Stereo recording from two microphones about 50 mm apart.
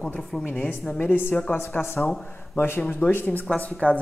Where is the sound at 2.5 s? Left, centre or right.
Left.